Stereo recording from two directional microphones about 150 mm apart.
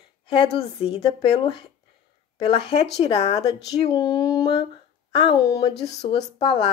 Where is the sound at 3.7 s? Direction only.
25° left (ahead or behind).